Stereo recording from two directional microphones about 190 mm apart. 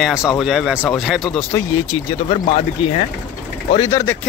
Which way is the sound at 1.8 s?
25° left (ahead or behind).